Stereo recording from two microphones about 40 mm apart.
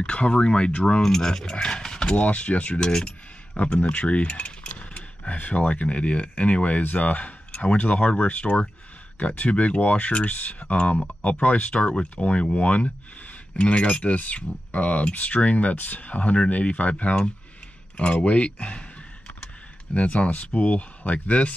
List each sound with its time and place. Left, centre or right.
0.0 s speech: left
1.0 s speech: centre
2.1 s speech: left
2.8 s speech: centre
3.9 s mechanisms: left
5.3 s speech: left
11.9 s speech: left